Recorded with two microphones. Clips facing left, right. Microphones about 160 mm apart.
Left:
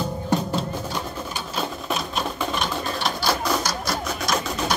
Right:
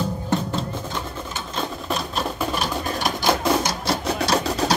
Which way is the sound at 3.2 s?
25° right (ahead or behind).